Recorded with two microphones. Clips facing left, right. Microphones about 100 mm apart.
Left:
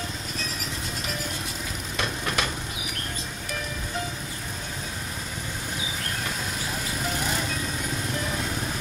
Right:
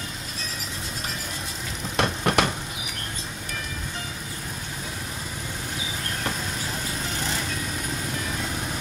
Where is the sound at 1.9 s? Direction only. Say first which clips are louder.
Right 7 dB; 60° right (ahead or behind).